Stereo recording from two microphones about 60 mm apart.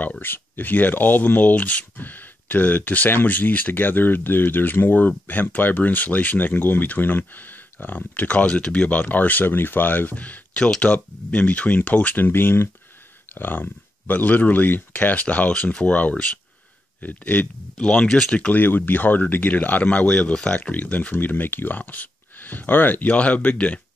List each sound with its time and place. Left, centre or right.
0.2 s speech: left
12.3 s speech: left
17.7 s speech: centre
18.5 s speech: left